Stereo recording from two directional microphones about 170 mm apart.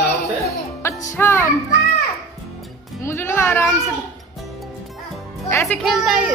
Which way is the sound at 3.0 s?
15° left (ahead or behind).